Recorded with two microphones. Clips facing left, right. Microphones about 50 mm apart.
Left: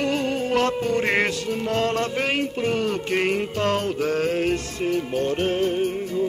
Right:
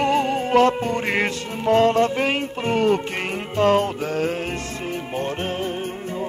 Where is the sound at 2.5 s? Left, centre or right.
Right.